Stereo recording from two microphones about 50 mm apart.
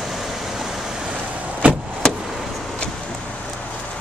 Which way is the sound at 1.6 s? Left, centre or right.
Right.